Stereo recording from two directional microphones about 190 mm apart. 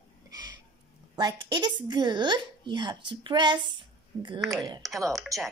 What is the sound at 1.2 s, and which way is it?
A woman's voice, 20° right (ahead or behind).